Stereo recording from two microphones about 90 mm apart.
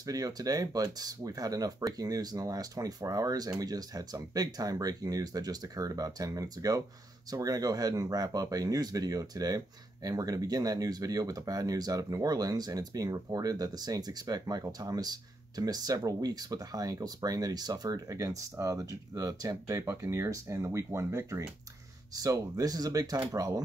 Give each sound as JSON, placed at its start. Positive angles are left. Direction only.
{"t": 0.0, "sound": "speech", "side_deg": -45}
{"t": 19.8, "sound": "speech", "side_deg": -30}